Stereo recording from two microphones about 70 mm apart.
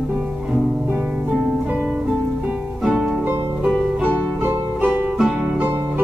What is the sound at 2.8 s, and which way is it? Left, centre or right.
Music, centre.